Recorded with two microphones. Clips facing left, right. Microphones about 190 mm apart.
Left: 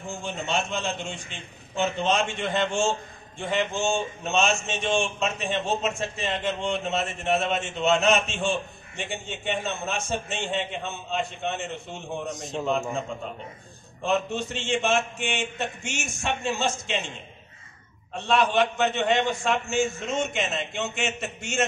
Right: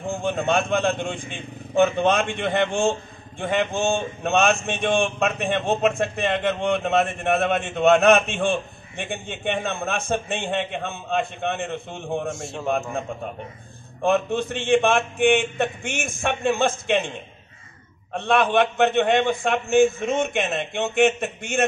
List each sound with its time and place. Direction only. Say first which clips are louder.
0.0 s speech: right 8 dB; 55° right (ahead or behind)
12.3 s a man's voice: right 1 dB; 20° left (ahead or behind)
12.6 s speech: right 2 dB; 55° right (ahead or behind)
14.0 s speech: right 5 dB; 55° right (ahead or behind)
18.1 s speech: right 3 dB; 55° right (ahead or behind)